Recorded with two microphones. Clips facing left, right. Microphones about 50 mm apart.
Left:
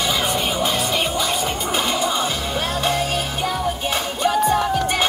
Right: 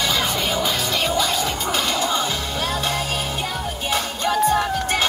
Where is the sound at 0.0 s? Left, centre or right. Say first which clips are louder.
Left 1 dB; centre.